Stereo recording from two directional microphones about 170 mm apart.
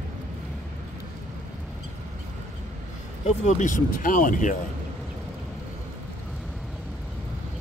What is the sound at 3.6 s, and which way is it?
Speech, 50° left (ahead or behind).